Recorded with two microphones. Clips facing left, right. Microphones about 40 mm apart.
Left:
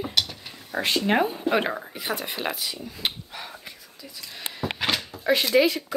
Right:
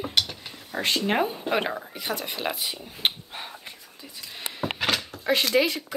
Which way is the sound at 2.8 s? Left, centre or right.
Right.